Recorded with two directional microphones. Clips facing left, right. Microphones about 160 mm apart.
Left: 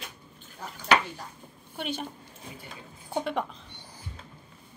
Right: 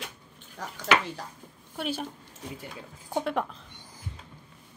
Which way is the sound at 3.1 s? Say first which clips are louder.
Right 1 dB; centre (ahead or behind).